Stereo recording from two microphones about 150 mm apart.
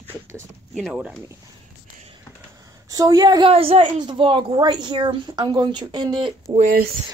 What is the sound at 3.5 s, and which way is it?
A woman's voice, 40° right (ahead or behind).